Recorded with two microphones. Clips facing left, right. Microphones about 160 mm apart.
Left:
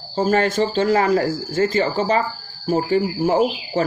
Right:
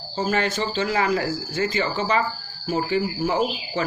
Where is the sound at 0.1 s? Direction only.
45° left (ahead or behind).